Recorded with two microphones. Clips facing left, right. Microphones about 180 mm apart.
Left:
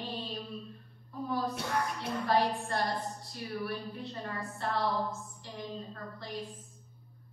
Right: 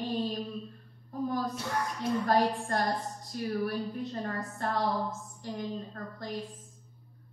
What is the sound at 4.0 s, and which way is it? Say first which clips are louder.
Music: right 4 dB; 45° right (ahead or behind).